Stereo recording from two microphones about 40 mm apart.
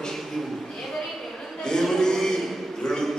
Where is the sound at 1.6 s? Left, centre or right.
Centre.